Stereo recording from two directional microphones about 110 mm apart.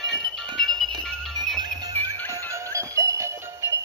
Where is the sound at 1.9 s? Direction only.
15° left (ahead or behind).